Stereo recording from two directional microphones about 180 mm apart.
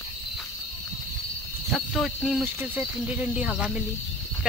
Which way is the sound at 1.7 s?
Centre (ahead or behind).